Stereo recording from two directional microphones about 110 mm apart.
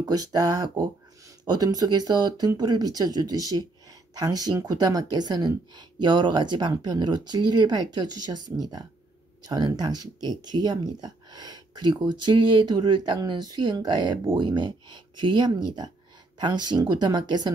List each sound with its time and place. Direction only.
0.0 s speech: 35° right (ahead or behind)